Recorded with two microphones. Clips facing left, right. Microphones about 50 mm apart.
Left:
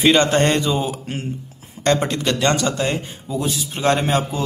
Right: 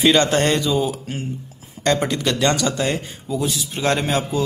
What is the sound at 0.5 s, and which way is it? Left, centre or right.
Speech, left.